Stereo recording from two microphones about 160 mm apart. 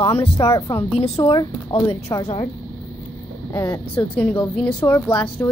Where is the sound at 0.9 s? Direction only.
40° left (ahead or behind).